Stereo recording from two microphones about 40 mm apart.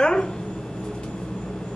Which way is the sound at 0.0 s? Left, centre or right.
Centre.